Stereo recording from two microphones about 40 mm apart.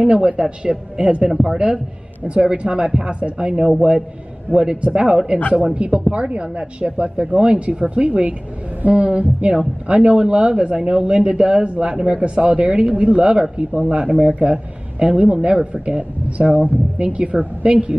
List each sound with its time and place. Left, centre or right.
0.0 s speech: right
2.5 s a man's voice: right
4.8 s speech: right